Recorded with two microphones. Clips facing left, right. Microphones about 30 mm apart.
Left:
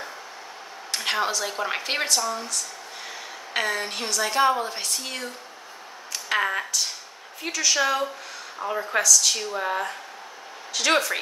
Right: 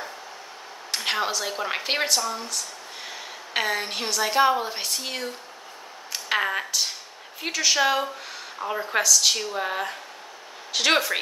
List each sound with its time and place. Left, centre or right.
0.9 s a woman's voice: centre
6.1 s a sound: centre
7.4 s speech: centre
9.0 s speech: centre